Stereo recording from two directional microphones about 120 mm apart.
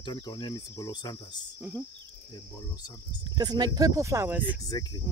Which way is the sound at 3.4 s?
35° right (ahead or behind).